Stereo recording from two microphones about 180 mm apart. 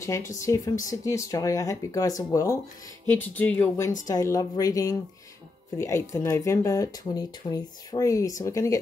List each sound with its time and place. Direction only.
0.3 s speech: 15° left (ahead or behind)